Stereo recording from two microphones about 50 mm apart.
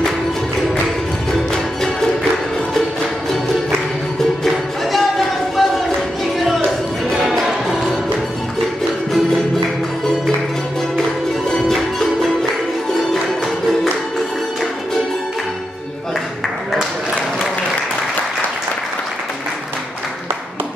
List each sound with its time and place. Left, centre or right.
1.5 s music: centre
4.9 s chatter: centre
7.2 s music: centre
11.7 s music: centre